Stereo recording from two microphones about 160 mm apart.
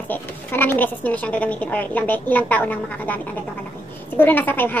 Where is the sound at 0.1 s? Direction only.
15° left (ahead or behind).